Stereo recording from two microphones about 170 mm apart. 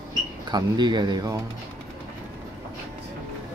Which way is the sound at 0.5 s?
25° right (ahead or behind).